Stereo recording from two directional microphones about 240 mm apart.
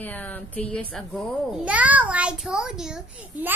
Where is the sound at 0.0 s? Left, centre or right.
Centre.